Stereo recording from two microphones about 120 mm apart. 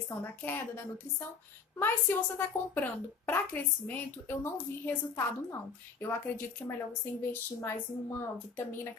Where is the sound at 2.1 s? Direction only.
15° left (ahead or behind).